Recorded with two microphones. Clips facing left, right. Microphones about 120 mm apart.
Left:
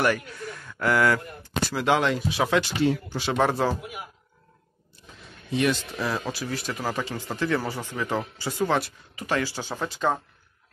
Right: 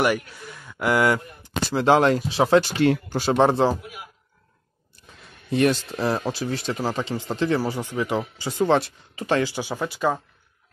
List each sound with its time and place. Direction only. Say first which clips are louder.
0.0 s a man's voice: right 2 dB; 10° right (ahead or behind)
0.5 s a sound: left 3 dB; 5° right (ahead or behind)
0.7 s speech: right 2 dB; 20° right (ahead or behind)
1.8 s speech: right 6 dB; 35° right (ahead or behind)
2.8 s speech: right 4 dB; 60° right (ahead or behind)
3.3 s speech: right 5 dB; 25° right (ahead or behind)
5.5 s speech: right 4 dB; 45° right (ahead or behind)
6.3 s speech: right 4 dB; 25° right (ahead or behind); by 10.2 s 5° right (ahead or behind)